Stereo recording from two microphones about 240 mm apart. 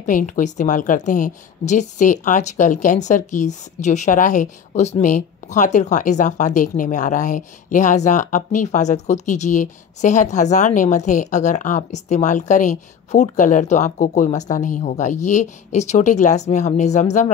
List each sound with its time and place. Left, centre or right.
0.0 s speech: left